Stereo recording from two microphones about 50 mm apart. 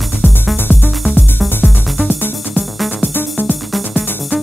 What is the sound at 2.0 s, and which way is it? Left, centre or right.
Music, left.